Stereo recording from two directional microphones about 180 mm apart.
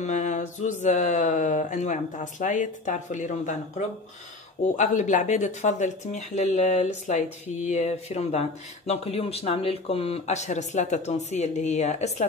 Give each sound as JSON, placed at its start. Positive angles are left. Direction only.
{"t": 0.0, "sound": "mantra", "side_deg": 45}
{"t": 4.7, "sound": "speech", "side_deg": 45}